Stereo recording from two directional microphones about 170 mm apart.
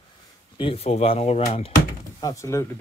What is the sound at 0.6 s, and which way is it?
Speech, 35° left (ahead or behind).